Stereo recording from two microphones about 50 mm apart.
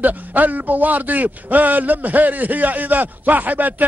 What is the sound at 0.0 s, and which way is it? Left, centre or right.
A man's voice, right.